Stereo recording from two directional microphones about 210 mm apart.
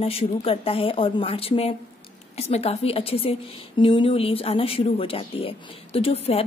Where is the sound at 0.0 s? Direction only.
30° left (ahead or behind).